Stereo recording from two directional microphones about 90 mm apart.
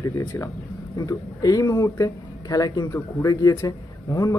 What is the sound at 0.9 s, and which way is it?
Speech, 40° left (ahead or behind).